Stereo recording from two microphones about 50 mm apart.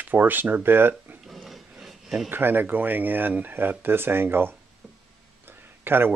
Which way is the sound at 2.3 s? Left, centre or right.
Right.